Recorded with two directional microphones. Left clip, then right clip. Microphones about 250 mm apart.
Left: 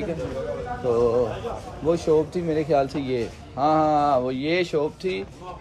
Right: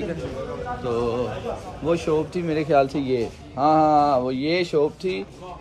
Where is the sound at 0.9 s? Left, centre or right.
Right.